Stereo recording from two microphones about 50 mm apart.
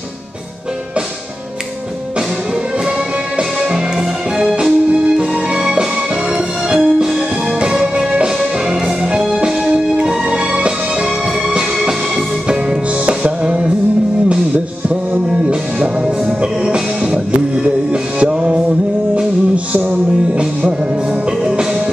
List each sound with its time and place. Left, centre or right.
4.5 s music: centre
13.0 s music: right
15.2 s music: centre
19.5 s music: right